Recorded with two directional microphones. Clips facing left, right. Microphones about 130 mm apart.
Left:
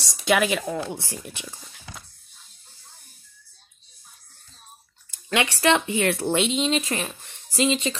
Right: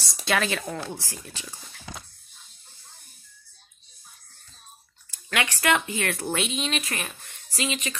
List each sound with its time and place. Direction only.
0.2 s speech: 15° left (ahead or behind)
5.1 s speech: 25° left (ahead or behind)